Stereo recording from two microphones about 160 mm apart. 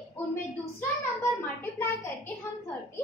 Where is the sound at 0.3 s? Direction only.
15° left (ahead or behind).